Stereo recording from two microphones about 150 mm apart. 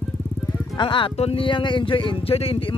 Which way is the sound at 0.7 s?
35° left (ahead or behind).